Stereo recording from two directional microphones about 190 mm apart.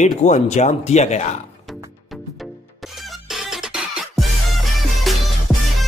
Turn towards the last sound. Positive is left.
turn(degrees=0)  # may be behind; listen again after turning